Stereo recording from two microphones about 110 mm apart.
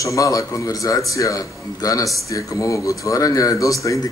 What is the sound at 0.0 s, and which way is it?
A man's voice, 30° left (ahead or behind).